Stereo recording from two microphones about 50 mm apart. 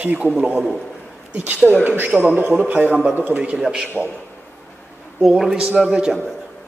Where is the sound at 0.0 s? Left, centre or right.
Right.